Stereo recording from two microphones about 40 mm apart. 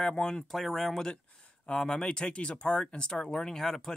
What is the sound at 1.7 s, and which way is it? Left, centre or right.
Speech, left.